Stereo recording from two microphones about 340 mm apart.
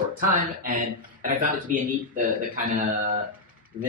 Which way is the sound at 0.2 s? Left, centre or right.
Right.